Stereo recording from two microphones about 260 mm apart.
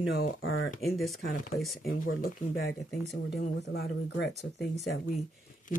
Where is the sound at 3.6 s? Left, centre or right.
Left.